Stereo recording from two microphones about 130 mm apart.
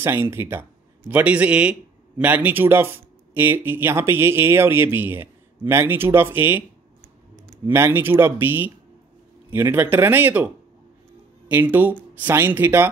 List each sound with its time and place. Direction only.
0.0 s a man's voice: 20° right (ahead or behind)
7.6 s a man's voice: 20° right (ahead or behind)